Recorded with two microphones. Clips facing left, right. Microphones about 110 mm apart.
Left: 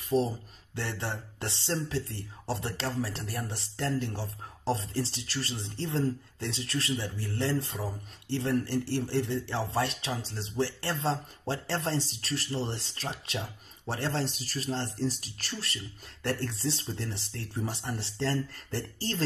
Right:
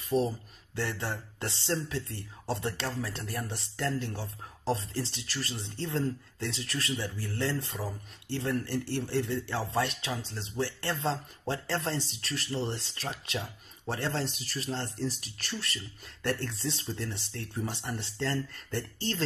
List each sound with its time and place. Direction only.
0.1 s speech: centre (ahead or behind)
0.7 s speech: 30° left (ahead or behind)